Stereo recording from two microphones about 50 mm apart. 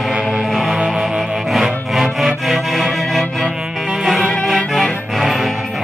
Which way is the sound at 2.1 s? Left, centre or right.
Centre.